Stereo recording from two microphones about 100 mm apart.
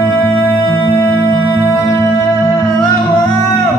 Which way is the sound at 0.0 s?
25° left (ahead or behind).